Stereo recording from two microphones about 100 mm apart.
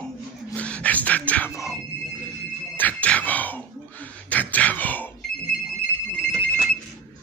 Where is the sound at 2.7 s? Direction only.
15° left (ahead or behind).